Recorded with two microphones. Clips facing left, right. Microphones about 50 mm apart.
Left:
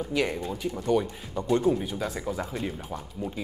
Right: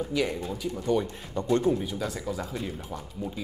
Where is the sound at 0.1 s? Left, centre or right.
Centre.